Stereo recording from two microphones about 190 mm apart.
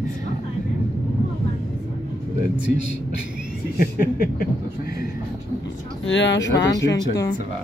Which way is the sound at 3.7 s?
50° left (ahead or behind).